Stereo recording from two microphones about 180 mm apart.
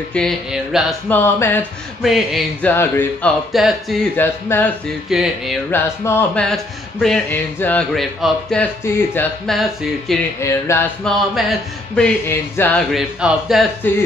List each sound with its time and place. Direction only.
0.1 s speech: 5° left (ahead or behind)
1.1 s speech: 10° left (ahead or behind)
2.0 s speech: centre (ahead or behind)
2.7 s speech: 10° left (ahead or behind)
3.5 s speech: centre (ahead or behind)
4.2 s speech: 10° left (ahead or behind)
5.1 s speech: centre (ahead or behind)
5.7 s speech: 15° left (ahead or behind)
10.4 s speech: 15° left (ahead or behind)
11.1 s speech: centre (ahead or behind)
12.9 s speech: centre (ahead or behind)